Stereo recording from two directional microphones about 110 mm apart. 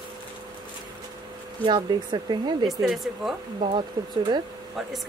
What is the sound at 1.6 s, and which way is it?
Speech, 45° right (ahead or behind).